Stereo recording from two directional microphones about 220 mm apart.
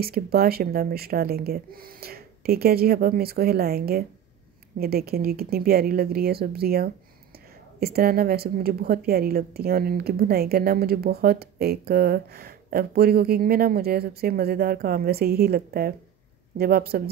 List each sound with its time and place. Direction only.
0.0 s a woman's voice: 45° right (ahead or behind)